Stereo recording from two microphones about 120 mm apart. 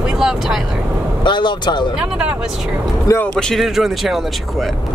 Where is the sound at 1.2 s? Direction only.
40° left (ahead or behind).